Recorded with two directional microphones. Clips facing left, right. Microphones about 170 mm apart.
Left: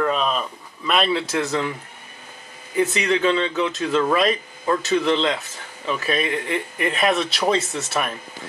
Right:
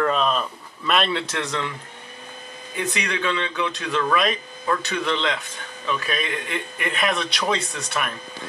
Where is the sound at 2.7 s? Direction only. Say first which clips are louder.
Left 7 dB; 25° left (ahead or behind).